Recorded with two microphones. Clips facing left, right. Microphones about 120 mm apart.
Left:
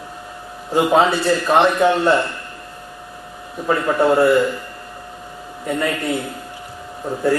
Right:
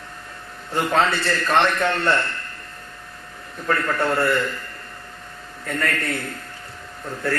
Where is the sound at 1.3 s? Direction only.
20° left (ahead or behind).